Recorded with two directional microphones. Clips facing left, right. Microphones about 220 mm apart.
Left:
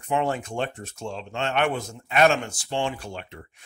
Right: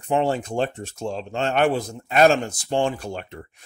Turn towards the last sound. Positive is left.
turn(degrees=-45)  # may be behind; listen again after turning